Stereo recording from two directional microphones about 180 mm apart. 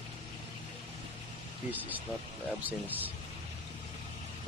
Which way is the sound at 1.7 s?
10° right (ahead or behind).